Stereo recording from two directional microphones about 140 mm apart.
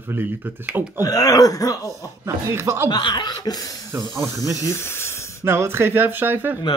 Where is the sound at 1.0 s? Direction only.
25° left (ahead or behind).